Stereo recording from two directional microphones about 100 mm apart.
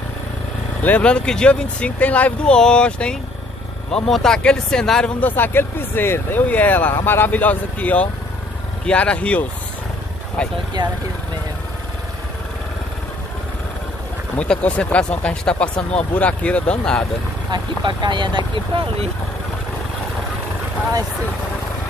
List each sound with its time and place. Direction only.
0.8 s speech: 10° left (ahead or behind)
5.2 s speech: 20° left (ahead or behind)
14.3 s speech: 15° left (ahead or behind)
17.5 s speech: 50° right (ahead or behind)